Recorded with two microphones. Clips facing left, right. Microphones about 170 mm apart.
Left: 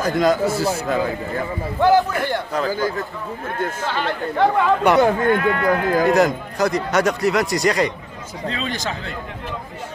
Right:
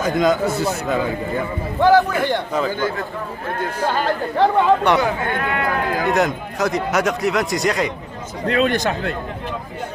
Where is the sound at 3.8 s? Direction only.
45° right (ahead or behind).